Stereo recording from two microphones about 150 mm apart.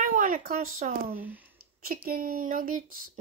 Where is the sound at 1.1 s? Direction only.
10° right (ahead or behind).